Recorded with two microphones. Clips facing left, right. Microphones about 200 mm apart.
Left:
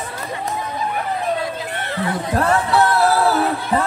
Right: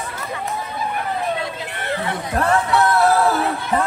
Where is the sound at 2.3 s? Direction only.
35° left (ahead or behind).